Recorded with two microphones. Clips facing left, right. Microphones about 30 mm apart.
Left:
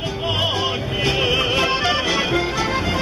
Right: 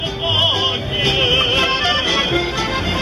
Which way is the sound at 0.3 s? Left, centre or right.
Right.